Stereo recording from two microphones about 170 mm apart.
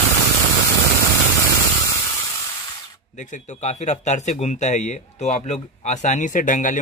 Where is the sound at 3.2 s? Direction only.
45° left (ahead or behind).